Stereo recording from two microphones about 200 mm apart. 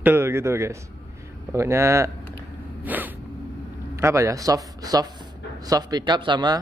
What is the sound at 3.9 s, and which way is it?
A man's voice, 15° right (ahead or behind).